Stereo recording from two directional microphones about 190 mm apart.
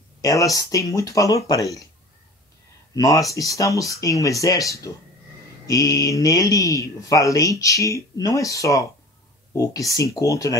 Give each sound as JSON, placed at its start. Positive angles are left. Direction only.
{"t": 0.2, "sound": "speech", "side_deg": 15}
{"t": 2.9, "sound": "speech", "side_deg": 20}